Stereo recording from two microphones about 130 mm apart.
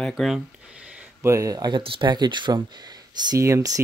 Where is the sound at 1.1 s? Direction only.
25° right (ahead or behind).